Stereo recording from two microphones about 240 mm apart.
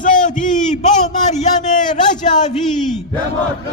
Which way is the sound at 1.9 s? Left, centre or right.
Left.